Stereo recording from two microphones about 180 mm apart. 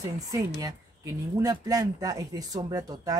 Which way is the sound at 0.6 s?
20° right (ahead or behind).